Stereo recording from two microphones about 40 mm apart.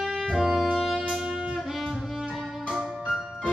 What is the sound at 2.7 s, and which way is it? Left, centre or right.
Music, right.